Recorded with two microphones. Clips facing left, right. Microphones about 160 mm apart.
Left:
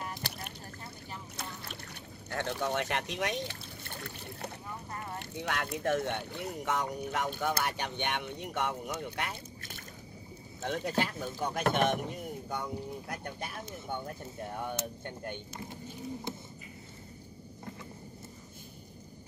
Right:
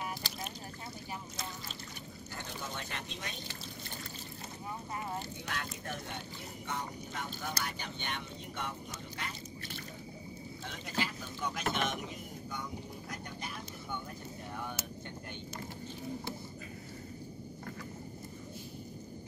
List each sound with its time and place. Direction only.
0.2 s boat: 60° left (ahead or behind)
2.3 s speech: 70° left (ahead or behind)
5.4 s speech: 65° left (ahead or behind)
10.6 s speech: 60° left (ahead or behind)
13.1 s a sound: 60° left (ahead or behind)